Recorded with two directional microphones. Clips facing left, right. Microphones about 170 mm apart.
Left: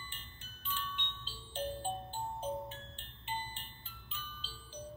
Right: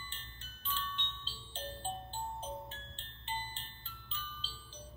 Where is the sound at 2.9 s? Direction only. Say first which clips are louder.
Right 1 dB; 15° left (ahead or behind).